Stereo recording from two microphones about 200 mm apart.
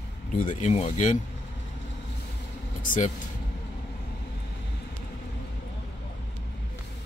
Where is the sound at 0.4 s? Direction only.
40° left (ahead or behind).